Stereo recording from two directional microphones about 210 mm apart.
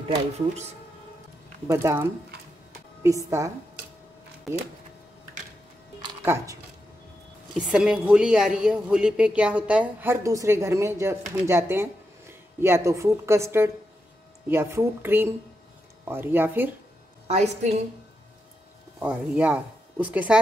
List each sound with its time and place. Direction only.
0.1 s speech: 30° right (ahead or behind)
1.7 s a woman's voice: 10° right (ahead or behind)
3.3 s a woman's voice: 15° right (ahead or behind)
5.9 s music: 15° right (ahead or behind)
7.5 s a woman's voice: 5° right (ahead or behind)
17.3 s a woman's voice: 30° right (ahead or behind)
18.9 s a woman's voice: 5° right (ahead or behind)